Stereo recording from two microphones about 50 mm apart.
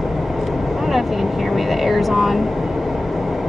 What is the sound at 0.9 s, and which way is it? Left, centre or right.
Vehicle, centre.